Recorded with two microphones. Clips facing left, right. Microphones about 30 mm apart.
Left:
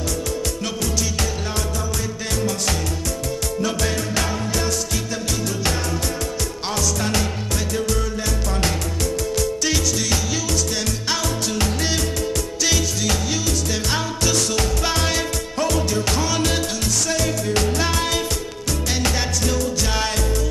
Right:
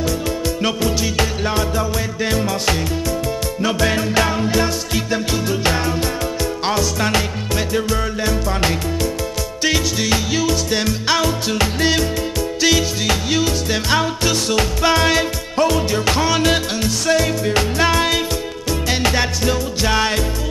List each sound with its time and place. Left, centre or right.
0.6 s music: right